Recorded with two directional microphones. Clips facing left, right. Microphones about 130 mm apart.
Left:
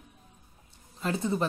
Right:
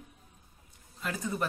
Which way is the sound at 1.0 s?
25° left (ahead or behind).